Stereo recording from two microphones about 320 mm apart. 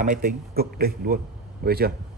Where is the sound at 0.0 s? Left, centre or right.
Right.